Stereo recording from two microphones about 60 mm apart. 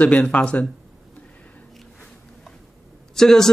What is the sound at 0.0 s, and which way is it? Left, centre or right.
Speech, left.